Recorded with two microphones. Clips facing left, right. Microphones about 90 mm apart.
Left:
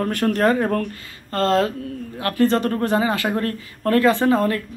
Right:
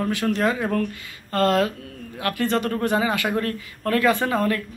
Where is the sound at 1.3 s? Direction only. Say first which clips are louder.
Left 1 dB; 30° left (ahead or behind).